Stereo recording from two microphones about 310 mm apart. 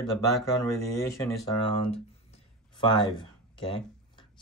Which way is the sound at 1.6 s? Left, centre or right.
Centre.